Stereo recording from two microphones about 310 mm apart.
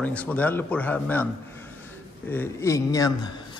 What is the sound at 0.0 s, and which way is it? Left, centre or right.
A man's voice, centre.